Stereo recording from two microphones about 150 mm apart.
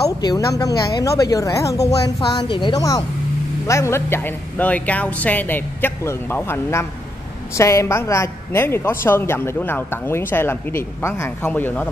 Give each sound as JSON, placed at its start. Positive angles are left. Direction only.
{"t": 0.2, "sound": "speech", "side_deg": 25}
{"t": 2.1, "sound": "speech", "side_deg": 30}